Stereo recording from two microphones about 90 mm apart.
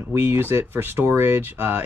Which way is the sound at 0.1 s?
30° right (ahead or behind).